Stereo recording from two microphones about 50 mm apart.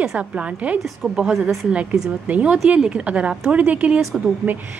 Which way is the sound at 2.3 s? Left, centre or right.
Right.